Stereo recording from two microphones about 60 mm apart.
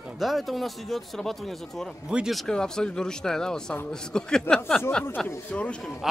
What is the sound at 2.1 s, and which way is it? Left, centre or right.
Speech, centre.